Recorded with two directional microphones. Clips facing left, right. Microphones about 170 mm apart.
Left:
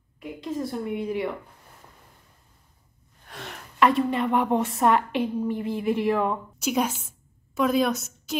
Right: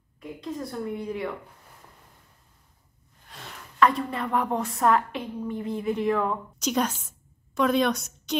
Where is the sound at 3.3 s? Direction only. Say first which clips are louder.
Left 4 dB; 60° left (ahead or behind).